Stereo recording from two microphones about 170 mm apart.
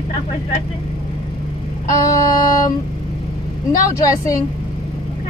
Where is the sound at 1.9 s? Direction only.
20° left (ahead or behind).